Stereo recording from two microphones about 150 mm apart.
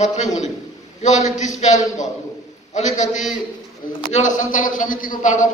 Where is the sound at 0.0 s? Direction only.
50° left (ahead or behind).